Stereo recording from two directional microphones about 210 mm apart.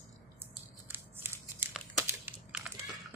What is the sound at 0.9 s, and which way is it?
Crumpling, 10° right (ahead or behind).